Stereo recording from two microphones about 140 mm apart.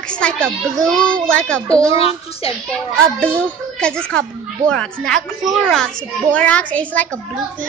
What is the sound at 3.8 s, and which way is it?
A child's voice, 5° left (ahead or behind).